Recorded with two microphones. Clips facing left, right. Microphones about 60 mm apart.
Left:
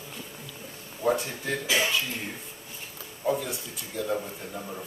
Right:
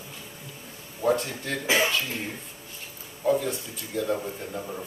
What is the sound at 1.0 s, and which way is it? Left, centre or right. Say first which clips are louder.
Speech: right 2 dB; centre.